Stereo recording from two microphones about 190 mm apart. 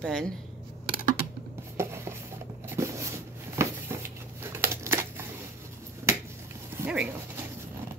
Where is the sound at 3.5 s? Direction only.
15° right (ahead or behind).